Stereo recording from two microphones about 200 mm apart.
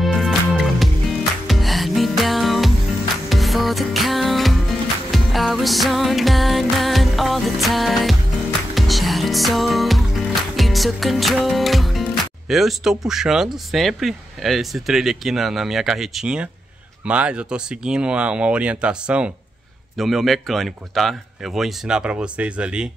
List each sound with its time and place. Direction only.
0.0 s music: centre (ahead or behind)
17.0 s speech: 5° right (ahead or behind)